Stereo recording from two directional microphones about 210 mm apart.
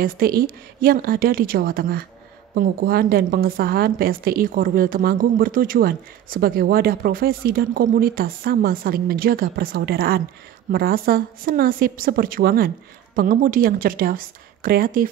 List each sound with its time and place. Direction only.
0.0 s a woman's voice: 45° right (ahead or behind)